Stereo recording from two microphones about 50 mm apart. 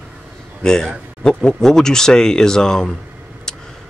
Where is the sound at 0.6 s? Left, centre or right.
Centre.